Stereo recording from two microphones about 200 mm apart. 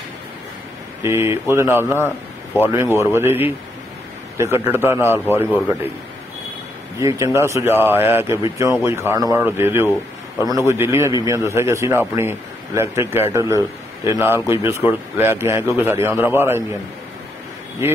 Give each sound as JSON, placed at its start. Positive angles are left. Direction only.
{"t": 1.0, "sound": "a man's voice", "side_deg": -15}
{"t": 7.0, "sound": "a man's voice", "side_deg": -15}